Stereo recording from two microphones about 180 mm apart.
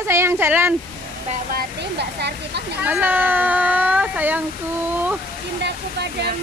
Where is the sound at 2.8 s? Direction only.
10° right (ahead or behind).